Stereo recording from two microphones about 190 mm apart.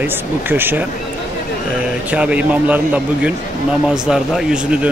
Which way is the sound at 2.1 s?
5° right (ahead or behind).